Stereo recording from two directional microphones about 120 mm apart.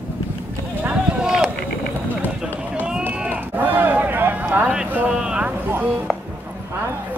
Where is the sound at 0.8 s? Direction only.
5° right (ahead or behind).